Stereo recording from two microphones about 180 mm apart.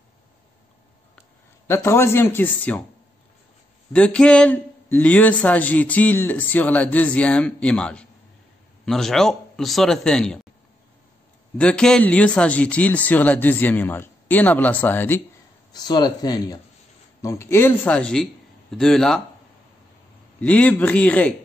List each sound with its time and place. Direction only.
1.7 s a man's voice: 15° left (ahead or behind)
3.9 s a man's voice: 5° left (ahead or behind)
11.5 s a man's voice: 5° left (ahead or behind)
15.7 s a man's voice: 25° left (ahead or behind); by 19.2 s 5° left (ahead or behind)
20.3 s a man's voice: 5° left (ahead or behind)